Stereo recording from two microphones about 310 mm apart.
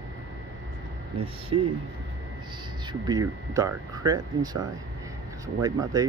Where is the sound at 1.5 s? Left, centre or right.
Right.